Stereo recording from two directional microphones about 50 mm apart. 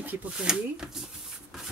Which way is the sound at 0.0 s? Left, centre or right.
Right.